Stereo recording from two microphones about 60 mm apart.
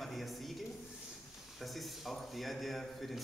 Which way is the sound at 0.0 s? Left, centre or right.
Centre.